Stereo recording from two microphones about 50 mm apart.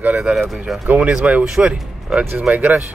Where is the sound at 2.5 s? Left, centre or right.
Right.